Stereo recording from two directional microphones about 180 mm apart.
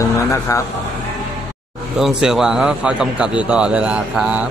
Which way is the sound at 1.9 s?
Centre (ahead or behind).